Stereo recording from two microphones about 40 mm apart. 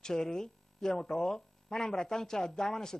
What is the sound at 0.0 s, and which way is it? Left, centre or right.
Speech, centre.